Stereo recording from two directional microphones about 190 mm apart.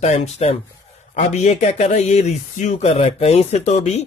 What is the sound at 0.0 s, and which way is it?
Speech, 35° left (ahead or behind).